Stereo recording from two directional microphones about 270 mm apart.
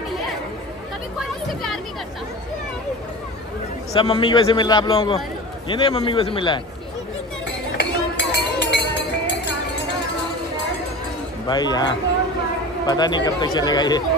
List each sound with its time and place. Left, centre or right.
1.5 s a sound: centre
3.9 s a man's voice: centre
7.7 s music: left
11.4 s a man's voice: centre